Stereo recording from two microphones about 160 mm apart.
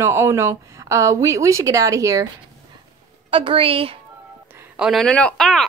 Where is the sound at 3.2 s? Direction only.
35° right (ahead or behind).